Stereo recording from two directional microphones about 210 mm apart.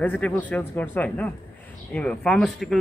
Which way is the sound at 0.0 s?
10° left (ahead or behind).